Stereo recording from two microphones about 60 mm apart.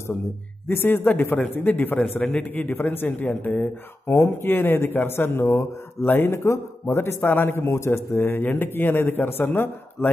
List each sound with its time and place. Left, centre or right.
0.7 s a man's voice: left
4.1 s a man's voice: left
4.5 s a man's voice: left
6.0 s a man's voice: left
8.2 s a man's voice: left